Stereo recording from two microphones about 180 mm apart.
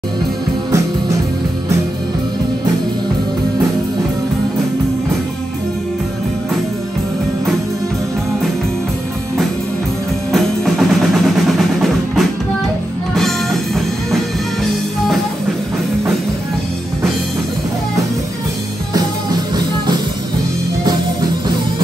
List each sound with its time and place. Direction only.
10.3 s drum: centre (ahead or behind)
13.1 s music: centre (ahead or behind)